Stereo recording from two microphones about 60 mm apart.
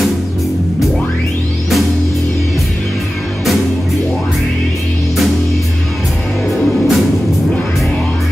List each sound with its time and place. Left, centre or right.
6.5 s music: centre